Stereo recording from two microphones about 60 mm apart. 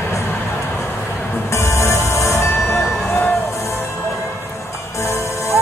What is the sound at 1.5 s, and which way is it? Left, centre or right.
Music, left.